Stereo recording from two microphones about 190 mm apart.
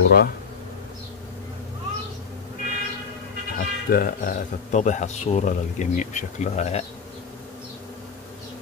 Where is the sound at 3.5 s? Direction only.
50° left (ahead or behind).